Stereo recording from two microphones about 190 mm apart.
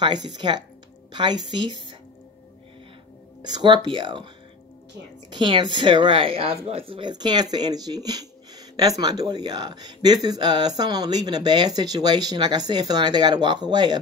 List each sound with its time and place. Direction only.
0.0 s speech: 25° right (ahead or behind)
3.5 s speech: 25° right (ahead or behind)
5.3 s speech: 25° right (ahead or behind)